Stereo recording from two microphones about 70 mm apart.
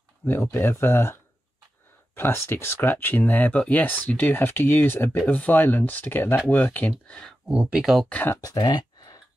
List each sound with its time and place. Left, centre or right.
0.2 s speech: left
2.1 s speech: left
7.1 s speech: centre
7.4 s speech: centre
8.4 s a sound: left